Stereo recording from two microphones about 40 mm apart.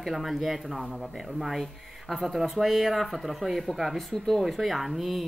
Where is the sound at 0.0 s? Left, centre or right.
Centre.